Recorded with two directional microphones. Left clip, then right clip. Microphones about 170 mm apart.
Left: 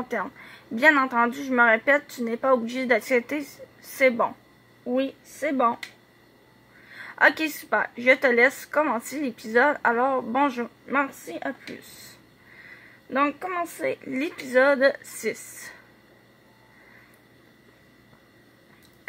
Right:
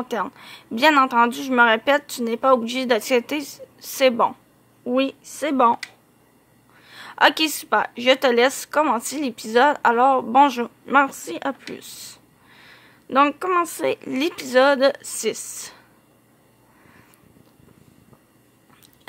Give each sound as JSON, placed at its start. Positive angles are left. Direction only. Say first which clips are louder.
{"t": 0.1, "sound": "a woman's voice", "louder": "right 4 dB", "side_deg": -30}
{"t": 4.8, "sound": "a woman's voice", "louder": "right 5 dB", "side_deg": -45}
{"t": 7.0, "sound": "a woman's voice", "louder": "right 3 dB", "side_deg": -30}
{"t": 13.1, "sound": "a woman's voice", "louder": "right 7 dB", "side_deg": -45}